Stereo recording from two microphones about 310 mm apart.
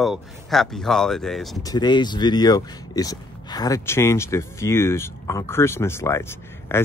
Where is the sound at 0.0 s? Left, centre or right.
Centre.